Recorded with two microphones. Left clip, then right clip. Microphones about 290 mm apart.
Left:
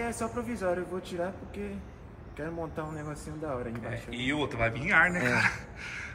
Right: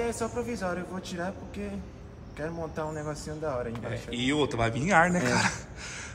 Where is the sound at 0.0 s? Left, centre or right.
Right.